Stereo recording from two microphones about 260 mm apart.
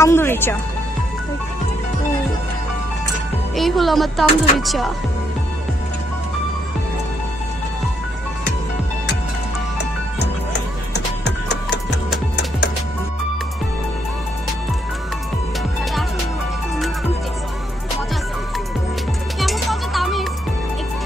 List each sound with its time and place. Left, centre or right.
0.0 s speech: centre
3.5 s speech: centre
10.9 s music: left
19.4 s music: centre